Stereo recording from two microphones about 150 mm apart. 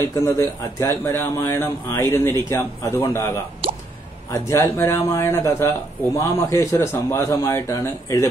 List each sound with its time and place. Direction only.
0.1 s a man's voice: 20° left (ahead or behind)
4.3 s speech: 20° left (ahead or behind)